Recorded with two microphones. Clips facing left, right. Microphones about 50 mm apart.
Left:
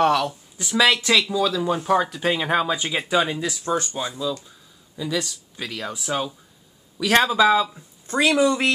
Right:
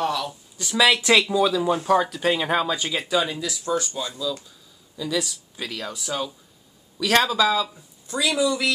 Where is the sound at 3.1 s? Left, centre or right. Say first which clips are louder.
Left 3 dB; left.